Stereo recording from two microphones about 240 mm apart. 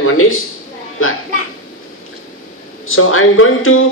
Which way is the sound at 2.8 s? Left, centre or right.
Left.